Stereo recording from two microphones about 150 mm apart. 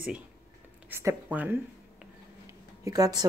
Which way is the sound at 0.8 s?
15° right (ahead or behind).